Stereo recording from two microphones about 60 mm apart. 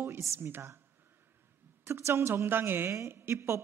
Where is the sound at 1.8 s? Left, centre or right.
Right.